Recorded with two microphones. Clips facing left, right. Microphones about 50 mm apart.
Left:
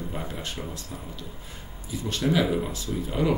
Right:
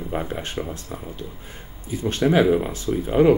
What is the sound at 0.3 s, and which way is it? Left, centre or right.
Speech, right.